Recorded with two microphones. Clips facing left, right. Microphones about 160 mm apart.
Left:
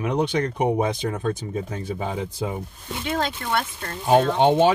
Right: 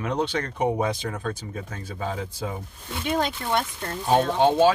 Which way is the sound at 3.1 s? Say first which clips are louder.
Even; 15° right (ahead or behind).